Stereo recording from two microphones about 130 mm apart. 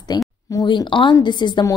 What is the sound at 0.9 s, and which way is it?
Speech, 40° left (ahead or behind).